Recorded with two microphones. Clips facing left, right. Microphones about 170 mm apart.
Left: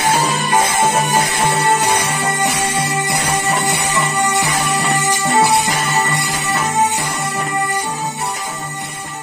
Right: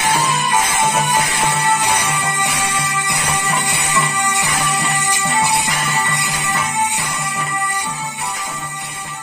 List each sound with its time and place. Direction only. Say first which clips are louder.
0.2 s music: left 2 dB; 30° left (ahead or behind)
4.8 s music: left 4 dB; 40° left (ahead or behind)